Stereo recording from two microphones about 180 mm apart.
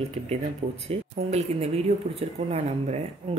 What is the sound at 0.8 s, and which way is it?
Speech, 35° right (ahead or behind).